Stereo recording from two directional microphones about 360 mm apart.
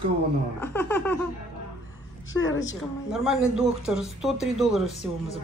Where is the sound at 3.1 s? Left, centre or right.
Centre.